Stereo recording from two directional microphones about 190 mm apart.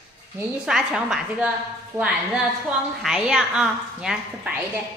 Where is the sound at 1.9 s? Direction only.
15° right (ahead or behind).